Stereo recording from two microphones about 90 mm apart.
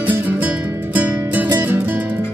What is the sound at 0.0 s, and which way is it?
Music, 20° right (ahead or behind).